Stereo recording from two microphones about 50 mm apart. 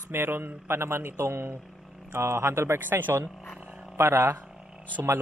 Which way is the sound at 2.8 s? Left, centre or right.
Right.